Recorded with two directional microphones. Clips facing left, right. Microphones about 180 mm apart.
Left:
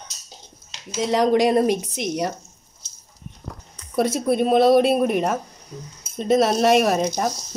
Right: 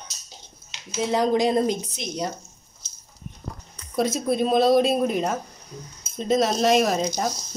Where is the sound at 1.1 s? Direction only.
75° left (ahead or behind).